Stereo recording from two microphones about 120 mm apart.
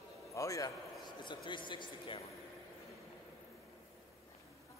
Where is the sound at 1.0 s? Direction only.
40° left (ahead or behind).